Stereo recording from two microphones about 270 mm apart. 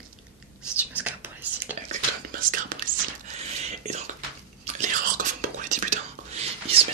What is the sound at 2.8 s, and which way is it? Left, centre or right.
Whispering, right.